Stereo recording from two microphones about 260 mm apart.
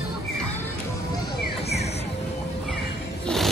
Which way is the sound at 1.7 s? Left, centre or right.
Left.